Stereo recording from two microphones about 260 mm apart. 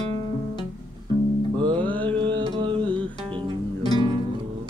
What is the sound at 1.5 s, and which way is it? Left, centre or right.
Music, centre.